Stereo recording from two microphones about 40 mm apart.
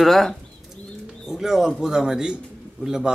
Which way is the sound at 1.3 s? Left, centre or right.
Centre.